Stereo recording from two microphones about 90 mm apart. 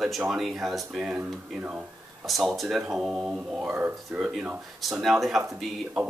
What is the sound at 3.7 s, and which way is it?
Speech, 20° right (ahead or behind).